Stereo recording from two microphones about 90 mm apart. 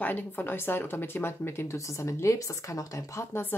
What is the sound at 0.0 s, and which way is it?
Speech, 20° left (ahead or behind).